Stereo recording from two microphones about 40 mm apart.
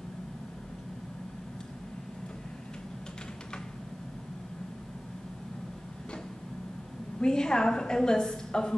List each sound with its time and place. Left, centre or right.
7.2 s a woman's voice: centre